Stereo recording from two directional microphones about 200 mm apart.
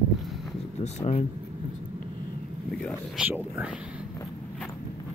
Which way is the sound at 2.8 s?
5° left (ahead or behind).